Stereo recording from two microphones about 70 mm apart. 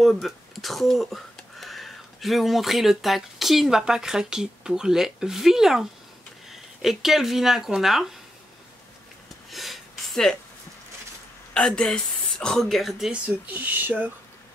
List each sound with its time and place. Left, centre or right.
0.0 s speech: centre
9.5 s a sound: centre
11.5 s a woman's voice: centre
13.1 s speech: right